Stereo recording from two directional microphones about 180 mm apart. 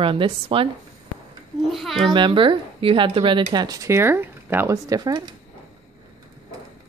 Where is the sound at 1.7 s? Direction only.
Centre (ahead or behind).